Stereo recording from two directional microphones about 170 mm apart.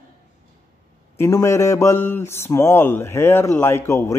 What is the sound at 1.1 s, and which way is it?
Speech, 15° left (ahead or behind).